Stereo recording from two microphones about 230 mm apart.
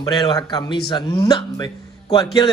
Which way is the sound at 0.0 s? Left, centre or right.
Centre.